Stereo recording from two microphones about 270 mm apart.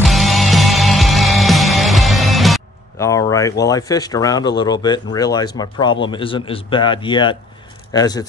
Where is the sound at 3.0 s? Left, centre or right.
Centre.